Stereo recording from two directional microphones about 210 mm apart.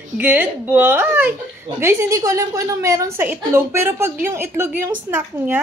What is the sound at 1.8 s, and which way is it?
A woman's voice, 10° right (ahead or behind).